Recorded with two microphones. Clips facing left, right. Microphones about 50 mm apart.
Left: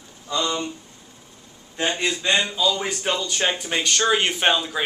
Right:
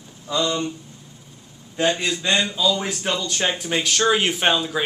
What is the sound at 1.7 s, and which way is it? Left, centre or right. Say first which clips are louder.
Speech: right 2 dB; centre.